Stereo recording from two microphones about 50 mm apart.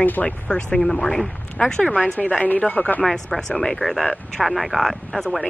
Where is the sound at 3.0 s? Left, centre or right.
Centre.